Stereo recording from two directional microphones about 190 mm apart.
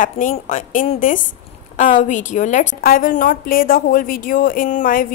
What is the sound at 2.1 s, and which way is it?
A woman's voice, 40° left (ahead or behind).